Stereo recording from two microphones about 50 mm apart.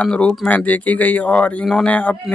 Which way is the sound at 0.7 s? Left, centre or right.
Left.